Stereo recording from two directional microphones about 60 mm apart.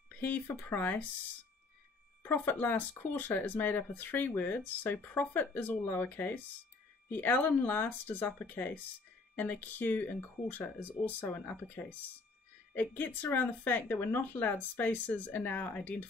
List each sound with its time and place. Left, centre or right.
0.2 s speech: left
2.2 s speech: left
11.1 s speech: left